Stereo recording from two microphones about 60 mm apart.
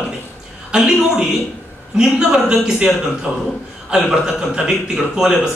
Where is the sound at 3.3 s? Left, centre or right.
Left.